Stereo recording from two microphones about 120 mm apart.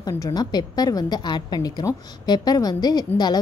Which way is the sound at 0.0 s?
30° left (ahead or behind).